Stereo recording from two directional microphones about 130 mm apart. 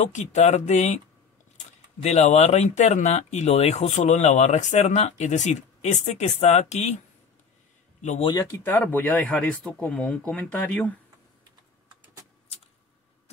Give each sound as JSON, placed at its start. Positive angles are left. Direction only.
{"t": 0.0, "sound": "speech", "side_deg": 60}
{"t": 2.0, "sound": "speech", "side_deg": 60}
{"t": 8.2, "sound": "speech", "side_deg": 35}
{"t": 8.5, "sound": "speech", "side_deg": 15}